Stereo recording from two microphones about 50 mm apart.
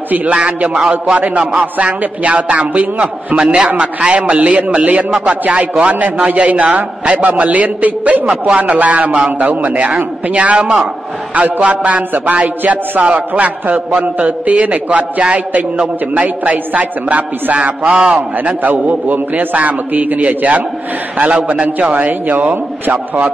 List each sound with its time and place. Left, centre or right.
0.1 s a man's voice: right
18.4 s a man's voice: right
21.6 s a man's voice: right